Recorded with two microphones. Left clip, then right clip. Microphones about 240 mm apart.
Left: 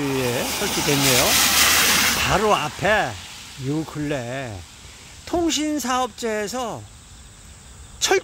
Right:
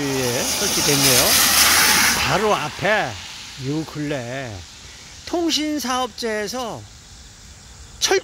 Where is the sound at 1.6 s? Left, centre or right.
Centre.